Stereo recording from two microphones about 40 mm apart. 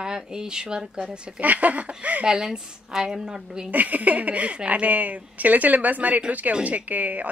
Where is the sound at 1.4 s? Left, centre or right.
Right.